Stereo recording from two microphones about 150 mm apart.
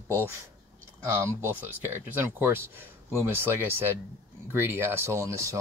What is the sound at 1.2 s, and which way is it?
Speech, 15° right (ahead or behind).